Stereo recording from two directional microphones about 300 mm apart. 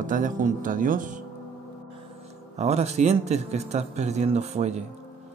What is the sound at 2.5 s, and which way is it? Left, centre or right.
A man's voice, right.